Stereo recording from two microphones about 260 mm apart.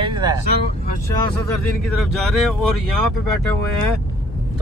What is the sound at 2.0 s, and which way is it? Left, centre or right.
Speech, centre.